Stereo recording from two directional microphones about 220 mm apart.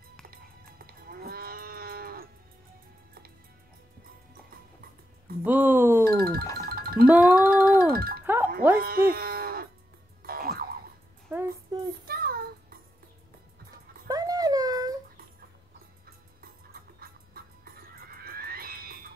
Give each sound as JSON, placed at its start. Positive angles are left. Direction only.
{"t": 0.8, "sound": "moo", "side_deg": -45}
{"t": 5.4, "sound": "a sound", "side_deg": -10}
{"t": 6.0, "sound": "music", "side_deg": -40}
{"t": 7.1, "sound": "music", "side_deg": -5}
{"t": 7.9, "sound": "music", "side_deg": -40}
{"t": 8.7, "sound": "cattle", "side_deg": -40}
{"t": 10.2, "sound": "music", "side_deg": -40}
{"t": 11.2, "sound": "music", "side_deg": -10}
{"t": 12.1, "sound": "child singing", "side_deg": -40}
{"t": 14.0, "sound": "a sound", "side_deg": -15}
{"t": 17.0, "sound": "music", "side_deg": -40}
{"t": 18.2, "sound": "a sound", "side_deg": -40}